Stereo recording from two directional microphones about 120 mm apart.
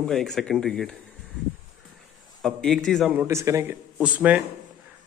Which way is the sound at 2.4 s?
5° left (ahead or behind).